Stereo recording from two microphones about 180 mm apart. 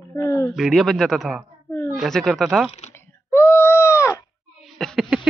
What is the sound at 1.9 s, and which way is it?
Speech, centre (ahead or behind).